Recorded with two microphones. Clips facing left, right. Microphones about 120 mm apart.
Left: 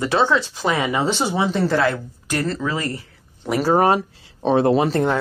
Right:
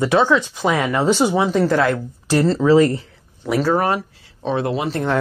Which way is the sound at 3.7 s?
25° left (ahead or behind).